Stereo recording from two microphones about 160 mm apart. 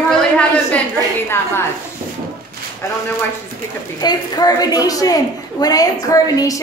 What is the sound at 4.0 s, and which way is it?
A woman's voice, 25° left (ahead or behind).